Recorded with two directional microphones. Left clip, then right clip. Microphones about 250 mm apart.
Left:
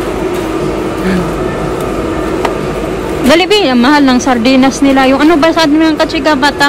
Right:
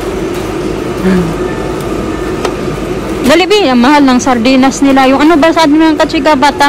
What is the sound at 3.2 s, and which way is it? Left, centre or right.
A woman's voice, centre.